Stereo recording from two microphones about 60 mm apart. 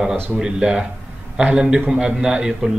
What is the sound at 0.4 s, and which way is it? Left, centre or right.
Speech, centre.